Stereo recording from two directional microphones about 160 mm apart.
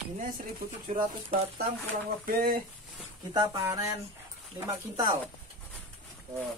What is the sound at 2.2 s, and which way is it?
Speech, 65° right (ahead or behind).